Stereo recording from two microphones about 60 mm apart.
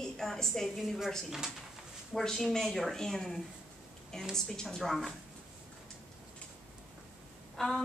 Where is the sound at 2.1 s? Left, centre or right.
Centre.